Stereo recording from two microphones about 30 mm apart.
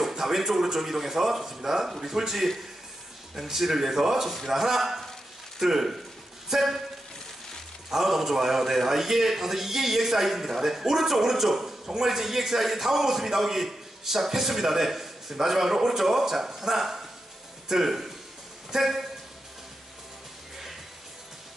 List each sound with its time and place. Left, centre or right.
0.0 s a man's voice: centre
7.9 s a man's voice: centre